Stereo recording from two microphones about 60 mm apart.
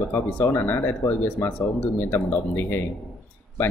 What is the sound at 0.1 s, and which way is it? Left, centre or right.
Speech, left.